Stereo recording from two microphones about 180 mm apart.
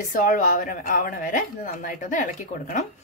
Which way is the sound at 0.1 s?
50° left (ahead or behind).